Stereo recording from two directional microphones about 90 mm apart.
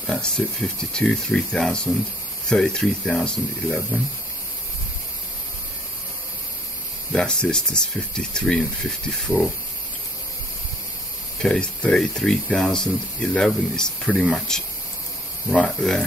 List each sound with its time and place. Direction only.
0.0 s speech: 10° left (ahead or behind)
7.1 s speech: 10° left (ahead or behind)
11.3 s speech: 5° left (ahead or behind)